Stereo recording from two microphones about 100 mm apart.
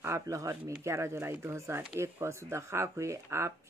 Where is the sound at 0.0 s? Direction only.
30° right (ahead or behind).